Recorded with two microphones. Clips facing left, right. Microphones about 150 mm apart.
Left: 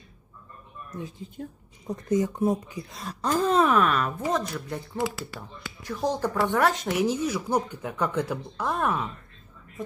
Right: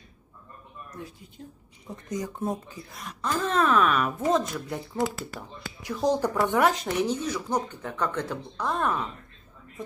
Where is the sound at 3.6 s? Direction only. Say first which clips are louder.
Right 1 dB; 10° left (ahead or behind).